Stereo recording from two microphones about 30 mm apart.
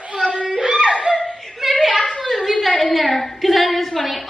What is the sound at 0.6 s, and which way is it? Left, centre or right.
Dog, right.